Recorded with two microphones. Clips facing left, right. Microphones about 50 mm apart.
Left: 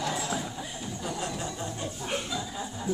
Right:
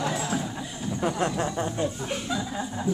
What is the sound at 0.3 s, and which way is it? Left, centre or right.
Horse, centre.